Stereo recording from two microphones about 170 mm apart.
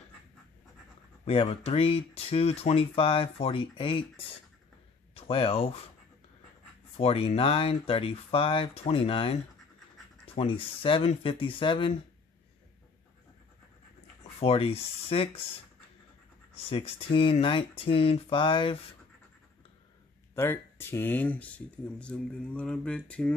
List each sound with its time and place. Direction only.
1.2 s speech: 35° left (ahead or behind)
5.1 s speech: 35° left (ahead or behind)
7.0 s speech: 35° left (ahead or behind)
14.4 s speech: 35° left (ahead or behind)
16.5 s speech: 35° left (ahead or behind)
20.3 s speech: 15° left (ahead or behind)